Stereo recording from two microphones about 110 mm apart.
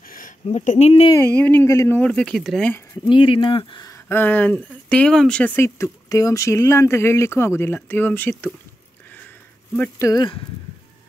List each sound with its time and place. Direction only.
0.5 s speech: 70° left (ahead or behind)
1.1 s speech: 20° left (ahead or behind)
1.7 s speech: 25° left (ahead or behind)
2.0 s speech: 10° left (ahead or behind)
3.1 s speech: 50° left (ahead or behind)
4.1 s speech: 15° left (ahead or behind)
5.6 s speech: 30° left (ahead or behind)
9.9 s speech: 30° left (ahead or behind)